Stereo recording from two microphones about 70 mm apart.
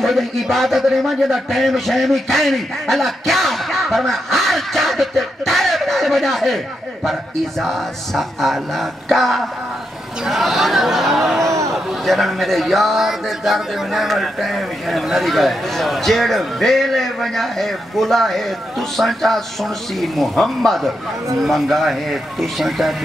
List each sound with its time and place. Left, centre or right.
0.0 s a man's voice: centre
11.4 s a sound: right
11.7 s a man's voice: centre